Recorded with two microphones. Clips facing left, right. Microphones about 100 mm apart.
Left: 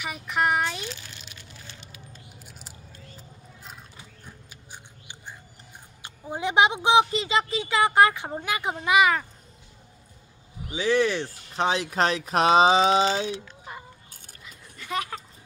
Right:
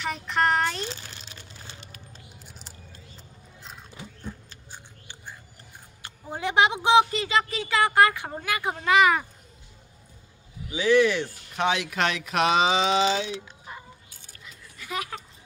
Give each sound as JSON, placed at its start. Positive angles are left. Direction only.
{"t": 0.0, "sound": "a child's voice", "side_deg": 10}
{"t": 0.9, "sound": "crumpling", "side_deg": -35}
{"t": 4.2, "sound": "rodents", "side_deg": 15}
{"t": 6.0, "sound": "a woman's voice", "side_deg": 20}
{"t": 10.7, "sound": "speech", "side_deg": 30}
{"t": 14.4, "sound": "keys jangling", "side_deg": -5}